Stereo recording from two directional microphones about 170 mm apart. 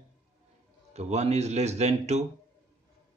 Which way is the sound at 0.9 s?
40° right (ahead or behind).